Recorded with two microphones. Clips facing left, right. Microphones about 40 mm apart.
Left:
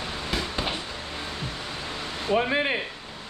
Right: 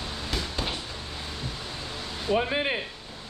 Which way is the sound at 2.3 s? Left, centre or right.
Centre.